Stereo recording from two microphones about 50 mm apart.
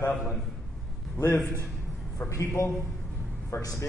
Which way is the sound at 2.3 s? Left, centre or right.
Left.